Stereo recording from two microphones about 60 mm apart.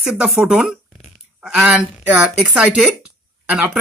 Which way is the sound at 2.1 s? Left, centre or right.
Right.